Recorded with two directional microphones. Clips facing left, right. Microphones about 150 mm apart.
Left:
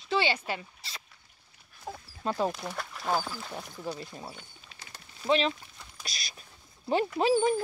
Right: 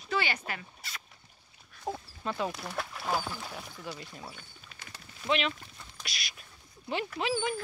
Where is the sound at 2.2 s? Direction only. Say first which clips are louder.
Left 4 dB; 35° left (ahead or behind).